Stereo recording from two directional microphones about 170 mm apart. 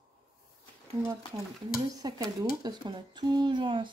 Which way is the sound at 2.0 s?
20° right (ahead or behind).